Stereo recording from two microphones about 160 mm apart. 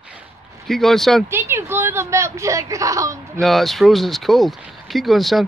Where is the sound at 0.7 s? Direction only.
Centre (ahead or behind).